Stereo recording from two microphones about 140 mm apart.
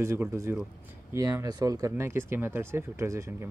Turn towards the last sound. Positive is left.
turn(degrees=-20)  # may be behind; listen again after turning